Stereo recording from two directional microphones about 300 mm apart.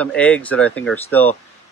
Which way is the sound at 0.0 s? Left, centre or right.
Centre.